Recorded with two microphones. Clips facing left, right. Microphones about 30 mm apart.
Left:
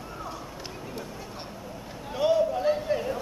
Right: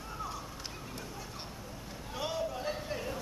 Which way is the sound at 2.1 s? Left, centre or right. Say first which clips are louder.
Left 12 dB; centre.